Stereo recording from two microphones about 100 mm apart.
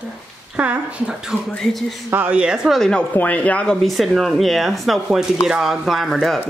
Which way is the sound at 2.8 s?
10° left (ahead or behind).